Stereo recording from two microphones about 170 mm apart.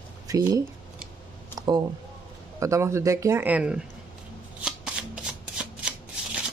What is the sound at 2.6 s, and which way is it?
Speech, 15° right (ahead or behind).